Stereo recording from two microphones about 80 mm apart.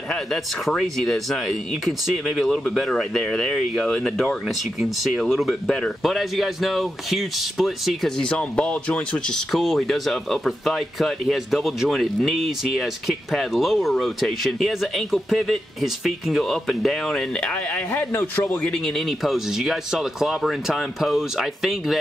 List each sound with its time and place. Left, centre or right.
0.1 s speech: centre
8.3 s speech: centre
9.5 s speech: centre
18.1 s a man's voice: left
18.9 s speech: centre